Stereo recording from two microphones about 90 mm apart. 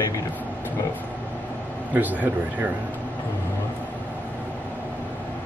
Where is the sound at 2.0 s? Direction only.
20° right (ahead or behind).